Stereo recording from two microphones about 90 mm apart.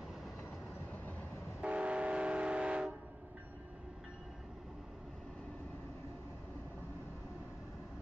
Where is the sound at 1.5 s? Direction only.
15° right (ahead or behind).